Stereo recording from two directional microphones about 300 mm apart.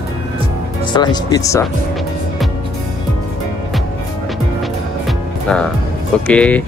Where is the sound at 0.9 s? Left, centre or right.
Centre.